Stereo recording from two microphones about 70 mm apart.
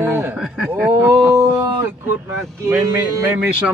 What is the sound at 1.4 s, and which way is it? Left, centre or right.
Speech, right.